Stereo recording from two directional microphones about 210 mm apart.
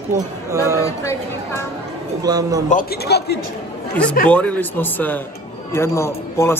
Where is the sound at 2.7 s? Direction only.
50° left (ahead or behind).